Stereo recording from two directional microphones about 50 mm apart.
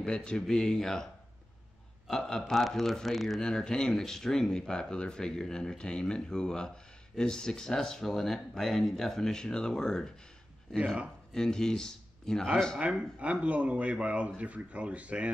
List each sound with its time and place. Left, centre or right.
0.0 s speech: centre
2.0 s speech: centre
3.3 s speech: centre
11.3 s speech: centre
12.7 s speech: right